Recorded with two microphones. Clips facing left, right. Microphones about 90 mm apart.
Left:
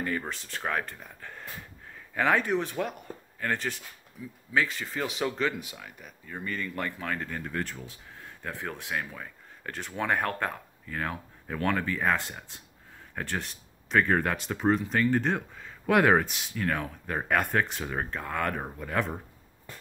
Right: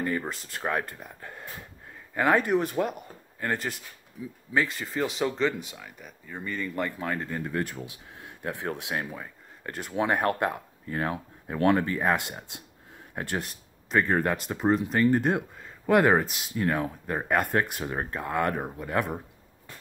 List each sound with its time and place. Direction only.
0.0 s speech: 10° right (ahead or behind)
7.0 s speech: 15° right (ahead or behind)
11.1 s speech: 25° right (ahead or behind)
13.4 s speech: 5° right (ahead or behind)
16.5 s speech: 20° right (ahead or behind)
17.1 s speech: 5° right (ahead or behind)